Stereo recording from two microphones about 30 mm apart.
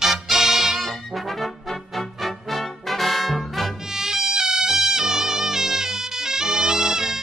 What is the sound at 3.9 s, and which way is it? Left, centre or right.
Music, centre.